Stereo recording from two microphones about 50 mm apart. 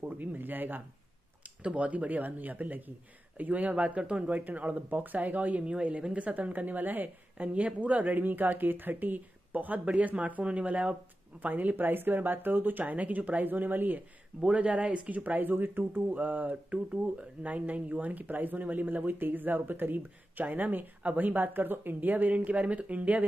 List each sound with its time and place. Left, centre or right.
0.0 s speech: right
1.6 s speech: right
4.3 s speech: right
11.4 s speech: right
14.4 s speech: right
15.0 s speech: right